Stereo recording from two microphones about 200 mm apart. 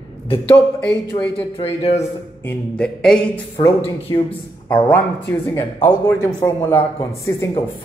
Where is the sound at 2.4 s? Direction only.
5° left (ahead or behind).